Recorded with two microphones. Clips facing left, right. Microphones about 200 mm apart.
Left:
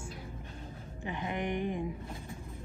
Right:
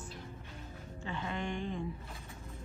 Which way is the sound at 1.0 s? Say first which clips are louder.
Left 3 dB; 15° left (ahead or behind).